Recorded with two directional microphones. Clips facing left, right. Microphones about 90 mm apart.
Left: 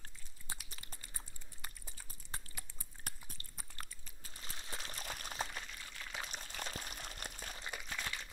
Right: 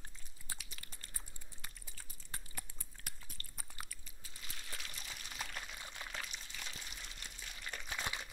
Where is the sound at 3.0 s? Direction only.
40° left (ahead or behind).